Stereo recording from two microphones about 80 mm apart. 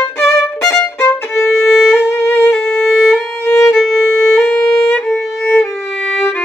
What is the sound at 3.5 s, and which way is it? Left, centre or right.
Violin, left.